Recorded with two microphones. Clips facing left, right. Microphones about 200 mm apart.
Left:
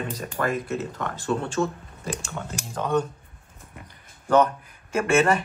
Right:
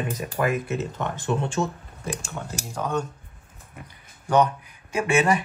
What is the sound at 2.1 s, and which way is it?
Speech, 10° right (ahead or behind).